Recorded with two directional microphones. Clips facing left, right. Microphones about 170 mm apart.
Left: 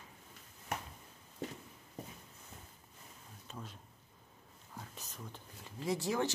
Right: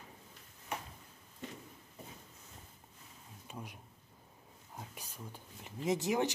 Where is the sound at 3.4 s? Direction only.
15° right (ahead or behind).